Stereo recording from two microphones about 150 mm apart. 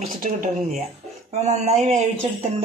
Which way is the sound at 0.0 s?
60° right (ahead or behind).